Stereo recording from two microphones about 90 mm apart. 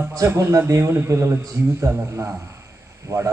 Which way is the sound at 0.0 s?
25° right (ahead or behind).